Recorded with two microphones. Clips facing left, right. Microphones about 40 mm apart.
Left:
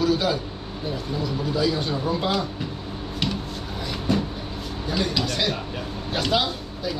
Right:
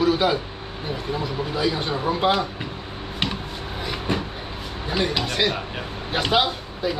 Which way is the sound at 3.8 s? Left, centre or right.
Right.